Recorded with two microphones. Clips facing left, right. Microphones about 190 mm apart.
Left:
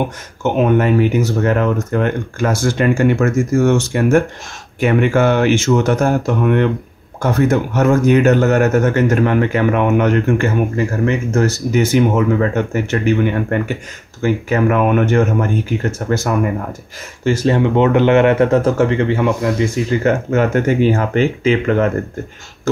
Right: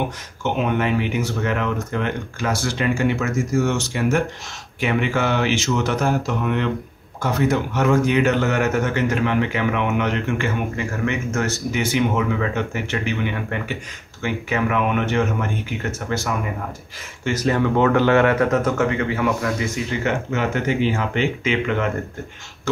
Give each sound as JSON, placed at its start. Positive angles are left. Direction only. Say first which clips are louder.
{"t": 0.4, "sound": "speech", "louder": "left 7 dB", "side_deg": 45}
{"t": 17.2, "sound": "speech", "louder": "left 5 dB", "side_deg": 30}
{"t": 20.0, "sound": "speech", "louder": "left 7 dB", "side_deg": 45}